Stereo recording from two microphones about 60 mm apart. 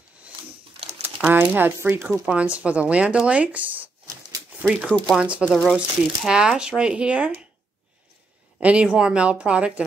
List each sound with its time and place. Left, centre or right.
1.0 s speech: right
2.2 s speech: centre
4.6 s speech: centre
5.5 s speech: centre
5.8 s speech: centre
8.5 s speech: centre